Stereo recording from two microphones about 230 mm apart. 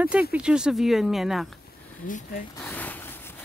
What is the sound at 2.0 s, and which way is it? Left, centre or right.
Speech, left.